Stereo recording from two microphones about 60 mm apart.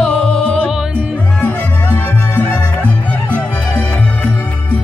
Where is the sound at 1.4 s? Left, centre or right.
Left.